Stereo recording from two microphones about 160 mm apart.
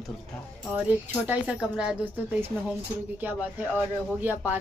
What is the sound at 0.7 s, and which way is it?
A woman's voice, 10° right (ahead or behind).